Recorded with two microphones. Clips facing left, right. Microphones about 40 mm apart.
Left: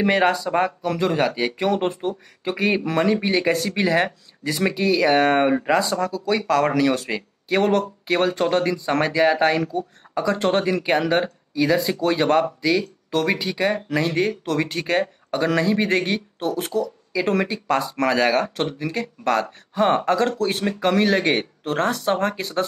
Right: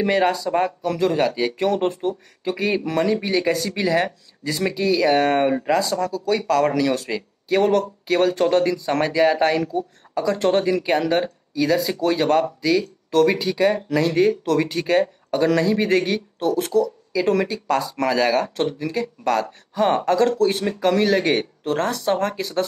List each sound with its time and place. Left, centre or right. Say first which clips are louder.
0.0 s speech: even; left